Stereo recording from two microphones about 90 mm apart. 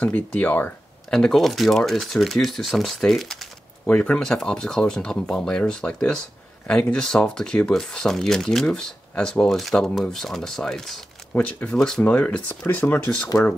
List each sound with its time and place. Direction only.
0.0 s speech: 15° left (ahead or behind)
1.1 s speech: 5° left (ahead or behind)
3.8 s speech: 15° left (ahead or behind)